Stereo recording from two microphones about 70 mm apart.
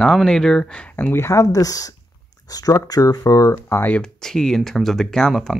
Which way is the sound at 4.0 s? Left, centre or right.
Centre.